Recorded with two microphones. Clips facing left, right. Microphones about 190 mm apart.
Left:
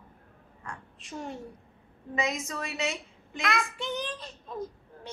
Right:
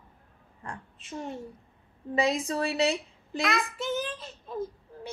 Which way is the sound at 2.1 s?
35° right (ahead or behind).